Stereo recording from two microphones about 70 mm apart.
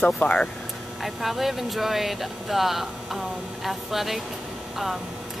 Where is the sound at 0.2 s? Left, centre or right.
Centre.